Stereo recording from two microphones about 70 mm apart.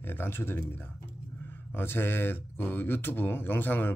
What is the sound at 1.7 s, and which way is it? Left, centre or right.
Speech, left.